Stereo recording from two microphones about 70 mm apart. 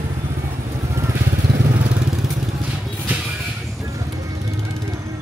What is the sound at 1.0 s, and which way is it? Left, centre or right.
Vehicle, right.